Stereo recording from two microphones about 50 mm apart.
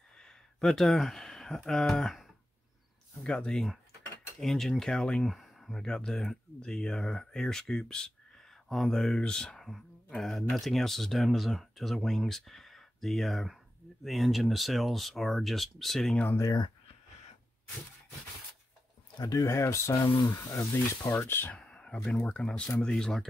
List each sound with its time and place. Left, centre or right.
0.2 s speech: centre
3.3 s speech: centre
8.6 s speech: centre
19.4 s speech: left
21.1 s speech: left
21.5 s speech: left